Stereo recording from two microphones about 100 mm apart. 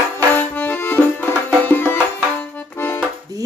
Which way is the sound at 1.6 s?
15° left (ahead or behind).